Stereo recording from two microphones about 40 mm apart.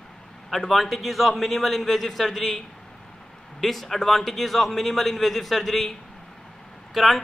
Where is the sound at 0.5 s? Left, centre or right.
Centre.